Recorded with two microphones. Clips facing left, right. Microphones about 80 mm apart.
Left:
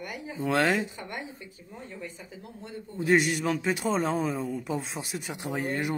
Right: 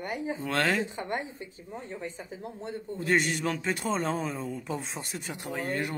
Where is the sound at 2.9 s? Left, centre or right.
Centre.